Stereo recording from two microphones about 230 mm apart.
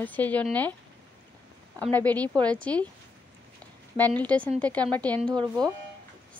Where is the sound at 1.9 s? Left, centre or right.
Centre.